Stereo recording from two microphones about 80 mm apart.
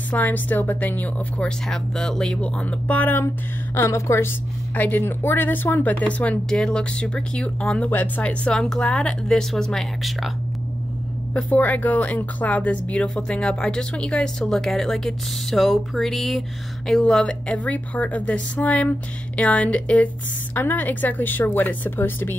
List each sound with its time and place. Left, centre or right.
0.1 s a woman's voice: centre
1.7 s a woman's voice: centre; by 3.3 s left
3.7 s a woman's voice: left
4.7 s a woman's voice: left; by 10.3 s centre
11.5 s a woman's voice: left; by 17.0 s centre
17.0 s a woman's voice: centre